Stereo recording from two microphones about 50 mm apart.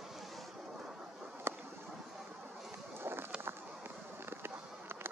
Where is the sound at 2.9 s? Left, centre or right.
Right.